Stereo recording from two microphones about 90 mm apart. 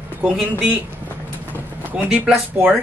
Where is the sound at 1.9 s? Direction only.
10° right (ahead or behind).